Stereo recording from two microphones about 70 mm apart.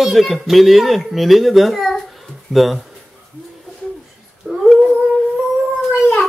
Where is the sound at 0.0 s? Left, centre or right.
Centre.